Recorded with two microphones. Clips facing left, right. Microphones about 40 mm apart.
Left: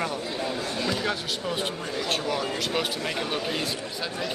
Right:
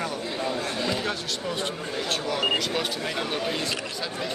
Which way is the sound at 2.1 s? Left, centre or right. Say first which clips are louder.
Right 3 dB; centre.